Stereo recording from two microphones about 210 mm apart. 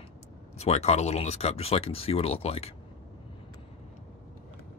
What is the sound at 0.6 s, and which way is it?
Speech, 30° left (ahead or behind).